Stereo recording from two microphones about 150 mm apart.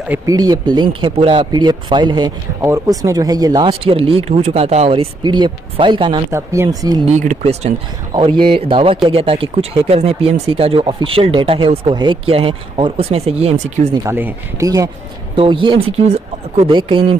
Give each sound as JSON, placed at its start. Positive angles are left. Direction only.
{"t": 0.3, "sound": "speech", "side_deg": -25}
{"t": 3.8, "sound": "speech", "side_deg": -40}
{"t": 6.3, "sound": "speech", "side_deg": -20}
{"t": 7.1, "sound": "speech", "side_deg": -50}
{"t": 8.1, "sound": "speech", "side_deg": -35}
{"t": 14.0, "sound": "speech", "side_deg": -15}
{"t": 15.3, "sound": "speech", "side_deg": -35}